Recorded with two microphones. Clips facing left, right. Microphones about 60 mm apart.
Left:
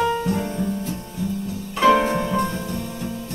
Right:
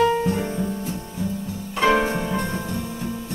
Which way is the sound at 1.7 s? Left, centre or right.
Centre.